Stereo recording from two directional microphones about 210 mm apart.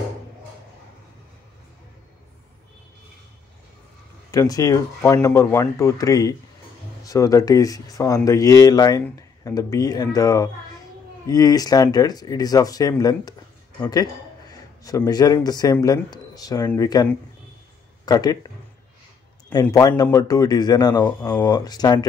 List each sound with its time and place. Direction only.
4.3 s speech: 15° left (ahead or behind)
19.5 s speech: 15° left (ahead or behind)